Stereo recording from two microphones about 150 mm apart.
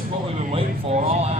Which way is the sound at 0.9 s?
45° right (ahead or behind).